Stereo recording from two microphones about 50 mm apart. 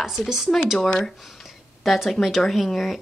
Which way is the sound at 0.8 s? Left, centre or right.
Centre.